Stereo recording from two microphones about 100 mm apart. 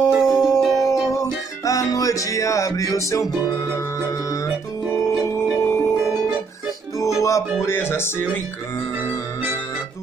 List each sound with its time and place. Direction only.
0.1 s music: 5° right (ahead or behind)
0.8 s music: 30° left (ahead or behind)
5.6 s music: 25° left (ahead or behind)
7.2 s music: 30° left (ahead or behind)